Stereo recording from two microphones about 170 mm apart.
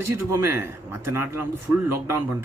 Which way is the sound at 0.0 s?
15° right (ahead or behind).